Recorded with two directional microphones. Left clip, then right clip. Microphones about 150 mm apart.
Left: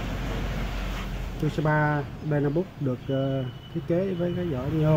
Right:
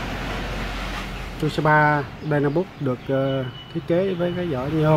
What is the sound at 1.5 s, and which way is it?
Speech, 20° right (ahead or behind).